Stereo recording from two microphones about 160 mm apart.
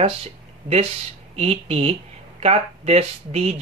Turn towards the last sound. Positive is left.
turn(degrees=-40)  # may be behind; listen again after turning